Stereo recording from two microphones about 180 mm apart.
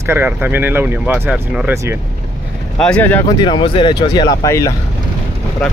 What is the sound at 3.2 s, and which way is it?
Speech, 25° left (ahead or behind).